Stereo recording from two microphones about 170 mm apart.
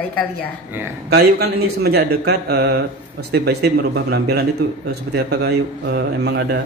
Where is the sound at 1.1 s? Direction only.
70° right (ahead or behind).